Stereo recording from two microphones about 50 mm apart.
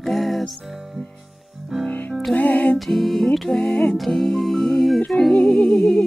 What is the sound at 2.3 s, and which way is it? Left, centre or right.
Music, left.